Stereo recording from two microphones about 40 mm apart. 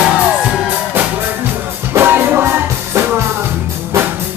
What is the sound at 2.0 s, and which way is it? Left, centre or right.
Music, right.